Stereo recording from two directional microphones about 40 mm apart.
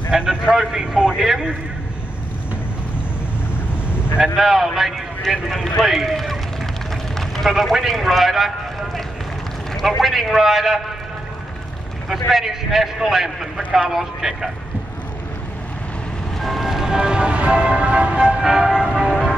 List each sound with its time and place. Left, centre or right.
0.3 s a man's voice: centre
4.2 s a man's voice: centre
5.9 s run: centre
7.7 s a man's voice: centre
9.8 s a man's voice: centre
12.1 s a man's voice: centre
16.3 s vehicle: centre
16.9 s music: right
18.8 s church bell: centre